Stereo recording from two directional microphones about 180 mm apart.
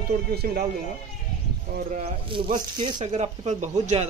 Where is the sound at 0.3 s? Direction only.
60° right (ahead or behind).